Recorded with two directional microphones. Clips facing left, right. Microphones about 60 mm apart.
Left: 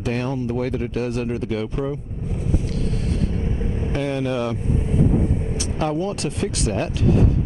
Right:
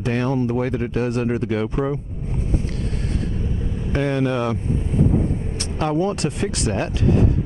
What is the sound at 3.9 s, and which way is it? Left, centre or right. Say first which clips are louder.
Speech: right 3 dB; centre.